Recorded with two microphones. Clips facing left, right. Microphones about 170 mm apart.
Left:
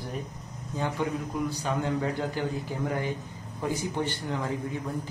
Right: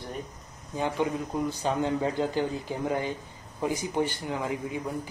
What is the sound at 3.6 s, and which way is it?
A man's voice, 15° right (ahead or behind).